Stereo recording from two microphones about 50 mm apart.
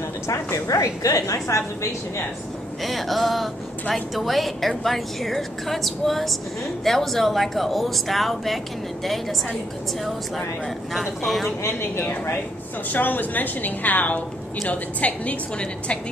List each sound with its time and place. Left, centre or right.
0.3 s a woman's voice: left
2.8 s a woman's voice: centre
10.9 s a woman's voice: centre
12.9 s a woman's voice: left